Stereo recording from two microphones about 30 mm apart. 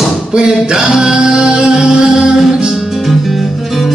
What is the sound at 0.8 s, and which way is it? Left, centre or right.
Music, right.